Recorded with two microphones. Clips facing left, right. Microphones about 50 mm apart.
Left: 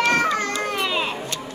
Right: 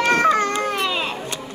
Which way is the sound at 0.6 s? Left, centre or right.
Centre.